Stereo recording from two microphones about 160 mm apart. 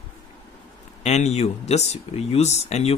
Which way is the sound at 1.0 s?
45° left (ahead or behind).